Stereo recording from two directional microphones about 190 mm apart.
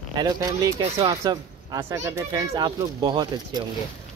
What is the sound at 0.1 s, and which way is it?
Speech, 20° right (ahead or behind).